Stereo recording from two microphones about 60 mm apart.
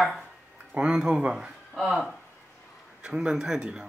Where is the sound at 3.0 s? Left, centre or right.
Centre.